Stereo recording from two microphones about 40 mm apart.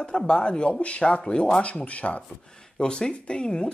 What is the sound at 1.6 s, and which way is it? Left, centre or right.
Speech, left.